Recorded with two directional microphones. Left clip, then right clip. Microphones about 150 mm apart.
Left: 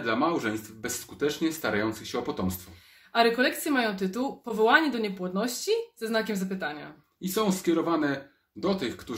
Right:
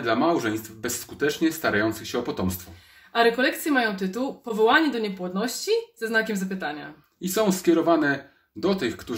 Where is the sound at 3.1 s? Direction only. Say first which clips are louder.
Right 3 dB; 25° left (ahead or behind).